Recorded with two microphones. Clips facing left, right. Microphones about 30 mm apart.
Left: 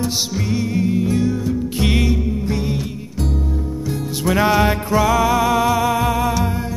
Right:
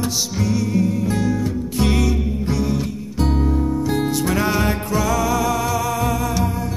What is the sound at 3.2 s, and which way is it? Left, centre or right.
Music, right.